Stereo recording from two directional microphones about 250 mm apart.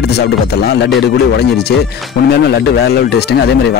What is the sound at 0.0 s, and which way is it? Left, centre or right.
Speech, left.